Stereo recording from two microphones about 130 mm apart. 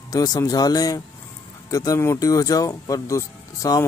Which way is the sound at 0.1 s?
30° left (ahead or behind).